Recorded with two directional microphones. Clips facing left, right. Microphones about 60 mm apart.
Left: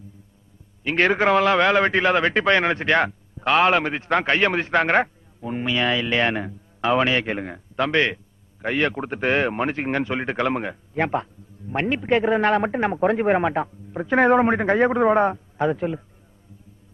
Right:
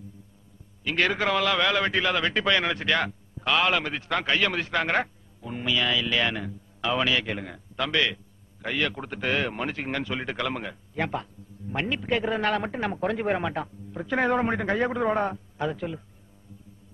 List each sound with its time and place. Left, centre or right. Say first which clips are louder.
0.8 s a man's voice: left 6 dB; left